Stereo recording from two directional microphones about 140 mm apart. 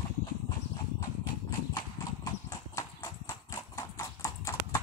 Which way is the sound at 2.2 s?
25° left (ahead or behind).